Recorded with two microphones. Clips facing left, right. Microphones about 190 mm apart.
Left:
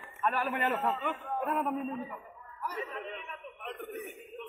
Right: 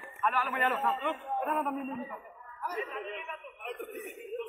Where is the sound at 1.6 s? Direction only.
Centre (ahead or behind).